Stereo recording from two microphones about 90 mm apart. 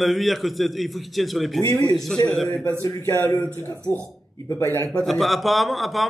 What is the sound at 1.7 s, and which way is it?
A man's voice, 50° left (ahead or behind).